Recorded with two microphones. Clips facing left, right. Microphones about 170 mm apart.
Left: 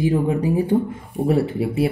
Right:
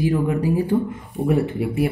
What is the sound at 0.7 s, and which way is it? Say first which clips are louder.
Speech: left 1 dB; 35° left (ahead or behind).